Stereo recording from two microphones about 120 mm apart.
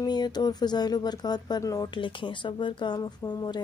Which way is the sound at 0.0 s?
35° left (ahead or behind).